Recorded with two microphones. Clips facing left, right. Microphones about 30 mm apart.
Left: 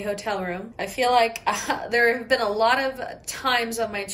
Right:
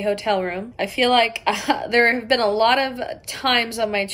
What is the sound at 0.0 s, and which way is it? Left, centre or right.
Speech, right.